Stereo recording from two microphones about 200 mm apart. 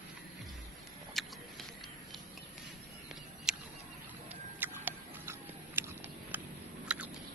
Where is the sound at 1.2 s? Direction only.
Centre (ahead or behind).